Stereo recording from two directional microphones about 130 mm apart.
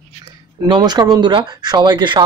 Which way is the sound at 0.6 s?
35° right (ahead or behind).